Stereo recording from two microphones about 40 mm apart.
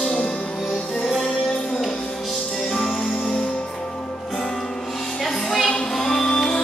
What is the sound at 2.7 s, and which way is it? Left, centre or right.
Music, centre.